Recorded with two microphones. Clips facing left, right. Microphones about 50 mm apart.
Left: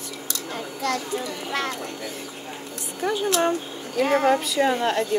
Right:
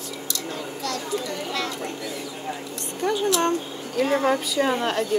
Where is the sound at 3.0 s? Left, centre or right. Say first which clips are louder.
Right 1 dB; centre.